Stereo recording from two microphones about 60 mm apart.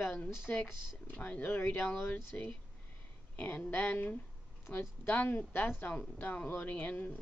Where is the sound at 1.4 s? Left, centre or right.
Left.